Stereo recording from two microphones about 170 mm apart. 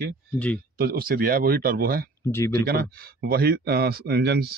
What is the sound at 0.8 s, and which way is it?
Speech, 60° right (ahead or behind).